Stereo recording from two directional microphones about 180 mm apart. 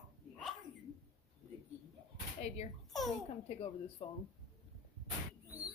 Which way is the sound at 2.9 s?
Centre (ahead or behind).